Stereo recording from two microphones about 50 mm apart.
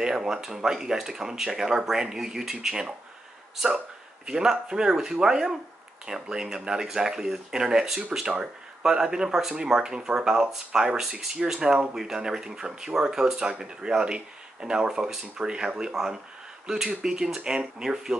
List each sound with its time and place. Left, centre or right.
0.0 s speech: centre
4.3 s speech: centre